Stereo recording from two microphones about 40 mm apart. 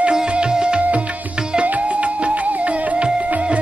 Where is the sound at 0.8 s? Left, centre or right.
Right.